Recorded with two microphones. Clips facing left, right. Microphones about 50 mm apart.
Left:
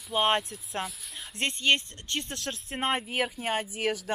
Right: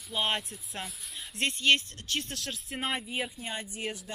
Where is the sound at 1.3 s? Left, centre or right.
Left.